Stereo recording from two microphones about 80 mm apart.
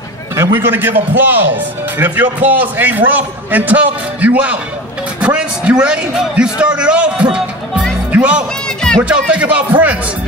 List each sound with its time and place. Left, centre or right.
0.6 s a man's voice: right
8.6 s run: centre
9.3 s speech: centre